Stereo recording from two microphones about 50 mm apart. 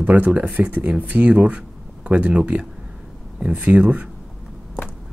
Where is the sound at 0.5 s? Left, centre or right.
Right.